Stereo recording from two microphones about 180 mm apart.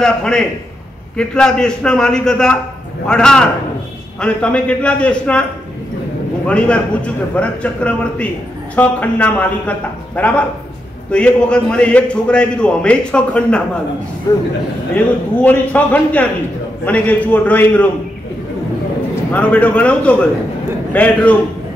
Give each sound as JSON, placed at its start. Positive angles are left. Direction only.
{"t": 0.0, "sound": "a man's voice", "side_deg": 5}
{"t": 6.4, "sound": "a man's voice", "side_deg": 5}
{"t": 14.3, "sound": "a man's voice", "side_deg": 20}
{"t": 15.4, "sound": "a man's voice", "side_deg": 10}
{"t": 19.3, "sound": "a man's voice", "side_deg": 10}